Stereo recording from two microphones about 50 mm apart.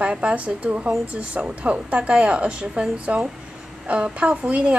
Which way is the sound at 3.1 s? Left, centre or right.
Right.